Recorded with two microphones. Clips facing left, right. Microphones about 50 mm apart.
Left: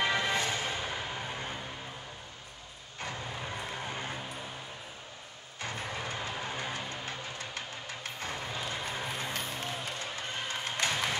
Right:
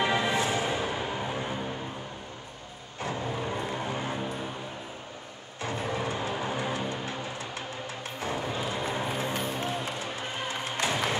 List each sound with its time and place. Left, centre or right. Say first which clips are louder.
0.0 s music: right 3 dB; right
3.0 s vehicle: right 6 dB; centre
3.7 s music: right 6 dB; centre
5.6 s vehicle: right 6 dB; right
6.4 s music: right 6 dB; right
8.2 s a sound: right 7 dB; centre
9.4 s music: right 6 dB; centre